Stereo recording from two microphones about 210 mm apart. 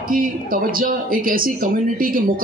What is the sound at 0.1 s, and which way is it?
Speech, 40° right (ahead or behind).